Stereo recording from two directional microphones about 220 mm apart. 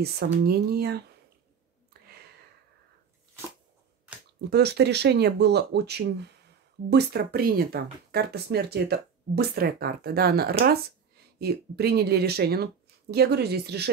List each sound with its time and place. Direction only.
0.0 s speech: 45° right (ahead or behind)
4.5 s speech: 50° right (ahead or behind)